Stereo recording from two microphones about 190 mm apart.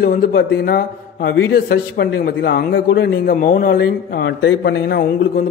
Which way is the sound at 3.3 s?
45° left (ahead or behind).